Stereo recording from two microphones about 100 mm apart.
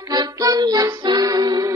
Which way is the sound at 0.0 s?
40° right (ahead or behind).